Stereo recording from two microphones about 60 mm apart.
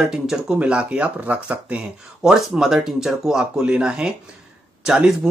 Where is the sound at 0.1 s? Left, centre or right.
Centre.